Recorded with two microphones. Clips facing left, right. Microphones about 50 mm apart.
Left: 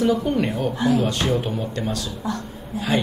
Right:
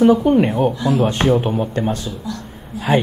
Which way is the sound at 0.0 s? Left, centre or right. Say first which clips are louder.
Right 7 dB; right.